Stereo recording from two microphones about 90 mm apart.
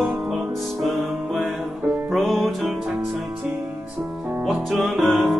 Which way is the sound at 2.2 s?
5° left (ahead or behind).